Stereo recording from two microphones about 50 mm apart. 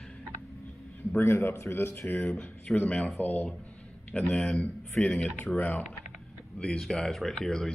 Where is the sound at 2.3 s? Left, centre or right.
Left.